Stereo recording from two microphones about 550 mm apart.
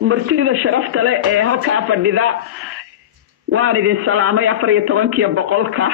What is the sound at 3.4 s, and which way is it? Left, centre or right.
A man's voice, right.